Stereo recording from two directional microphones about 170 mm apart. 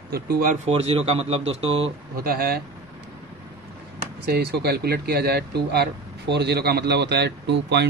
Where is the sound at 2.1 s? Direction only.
60° right (ahead or behind).